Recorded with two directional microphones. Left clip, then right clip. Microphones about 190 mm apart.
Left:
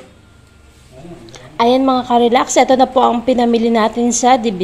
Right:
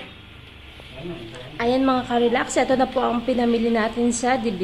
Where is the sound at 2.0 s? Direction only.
25° left (ahead or behind).